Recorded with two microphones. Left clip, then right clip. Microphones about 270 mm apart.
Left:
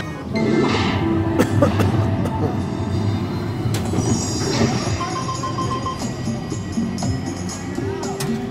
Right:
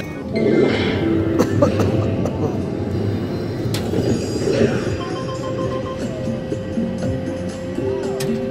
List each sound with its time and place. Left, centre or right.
0.4 s music: left
1.4 s cough: centre
4.1 s music: left